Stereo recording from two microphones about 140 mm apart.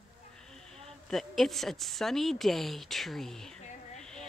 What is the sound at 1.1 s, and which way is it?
A woman's voice, centre (ahead or behind).